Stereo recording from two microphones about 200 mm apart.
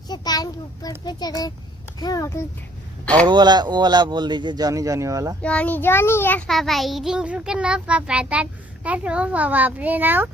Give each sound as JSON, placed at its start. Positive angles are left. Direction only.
{"t": 0.1, "sound": "a child's voice", "side_deg": 20}
{"t": 3.3, "sound": "speech", "side_deg": -20}
{"t": 5.4, "sound": "a child's voice", "side_deg": 5}